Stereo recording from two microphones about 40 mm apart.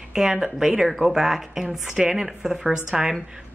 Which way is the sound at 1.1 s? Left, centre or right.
Centre.